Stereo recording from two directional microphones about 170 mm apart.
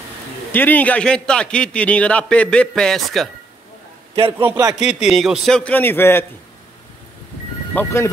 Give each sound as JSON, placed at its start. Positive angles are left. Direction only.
{"t": 0.5, "sound": "a man's voice", "side_deg": 10}
{"t": 4.4, "sound": "a man's voice", "side_deg": -15}
{"t": 4.8, "sound": "a man's voice", "side_deg": -5}
{"t": 7.7, "sound": "a man's voice", "side_deg": 15}